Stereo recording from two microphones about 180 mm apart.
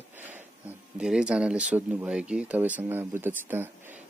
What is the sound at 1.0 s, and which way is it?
Speech, 5° right (ahead or behind).